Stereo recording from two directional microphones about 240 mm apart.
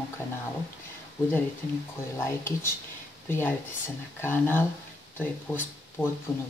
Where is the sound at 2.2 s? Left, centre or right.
Centre.